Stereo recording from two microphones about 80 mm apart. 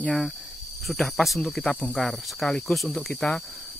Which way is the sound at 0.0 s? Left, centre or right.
Centre.